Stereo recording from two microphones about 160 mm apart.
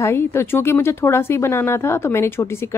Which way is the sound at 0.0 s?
15° left (ahead or behind).